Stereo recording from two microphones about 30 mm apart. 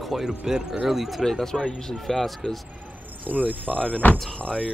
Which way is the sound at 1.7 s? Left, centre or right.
Centre.